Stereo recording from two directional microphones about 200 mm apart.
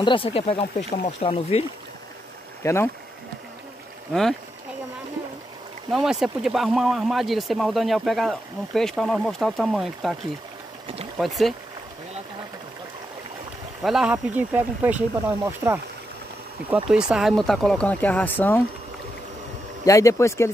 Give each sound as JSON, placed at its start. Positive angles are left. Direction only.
{"t": 0.0, "sound": "speech", "side_deg": 25}
{"t": 2.6, "sound": "speech", "side_deg": 15}
{"t": 4.1, "sound": "speech", "side_deg": 0}
{"t": 5.9, "sound": "speech", "side_deg": 0}
{"t": 11.1, "sound": "speech", "side_deg": 0}
{"t": 13.8, "sound": "speech", "side_deg": 0}
{"t": 19.8, "sound": "speech", "side_deg": 15}